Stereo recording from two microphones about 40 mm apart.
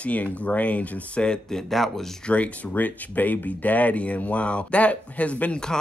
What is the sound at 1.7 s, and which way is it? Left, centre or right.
Speech, centre.